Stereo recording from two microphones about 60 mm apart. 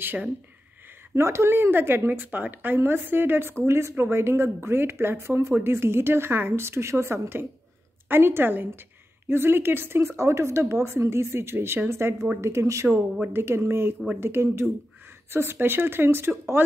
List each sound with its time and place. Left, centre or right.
0.0 s a woman's voice: right
1.1 s a woman's voice: right
3.6 s a woman's voice: right
13.3 s a woman's voice: right